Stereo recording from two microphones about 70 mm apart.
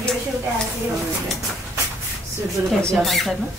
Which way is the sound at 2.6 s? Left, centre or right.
Right.